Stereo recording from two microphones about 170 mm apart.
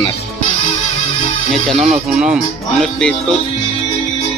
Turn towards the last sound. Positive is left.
turn(degrees=5)  # may be behind; listen again after turning